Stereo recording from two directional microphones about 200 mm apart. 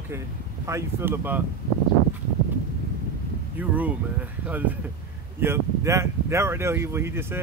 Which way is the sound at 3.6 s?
5° right (ahead or behind).